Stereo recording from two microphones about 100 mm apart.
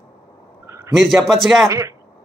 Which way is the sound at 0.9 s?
Centre (ahead or behind).